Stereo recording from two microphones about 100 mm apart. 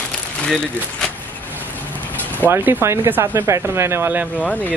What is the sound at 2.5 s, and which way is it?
Speech, 25° right (ahead or behind).